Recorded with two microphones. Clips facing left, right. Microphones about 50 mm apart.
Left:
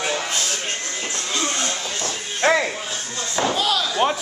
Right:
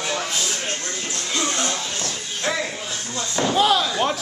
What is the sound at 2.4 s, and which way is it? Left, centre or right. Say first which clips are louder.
Music: left 7 dB; left.